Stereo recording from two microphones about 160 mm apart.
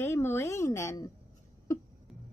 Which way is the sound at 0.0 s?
15° left (ahead or behind).